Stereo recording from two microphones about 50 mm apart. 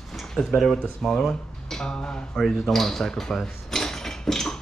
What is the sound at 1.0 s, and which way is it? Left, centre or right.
Speech, centre.